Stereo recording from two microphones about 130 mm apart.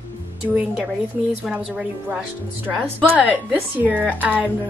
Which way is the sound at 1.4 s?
5° right (ahead or behind).